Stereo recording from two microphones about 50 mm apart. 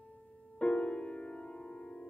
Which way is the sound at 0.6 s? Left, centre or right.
Left.